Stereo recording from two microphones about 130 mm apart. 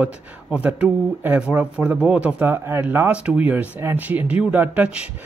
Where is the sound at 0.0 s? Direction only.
10° right (ahead or behind).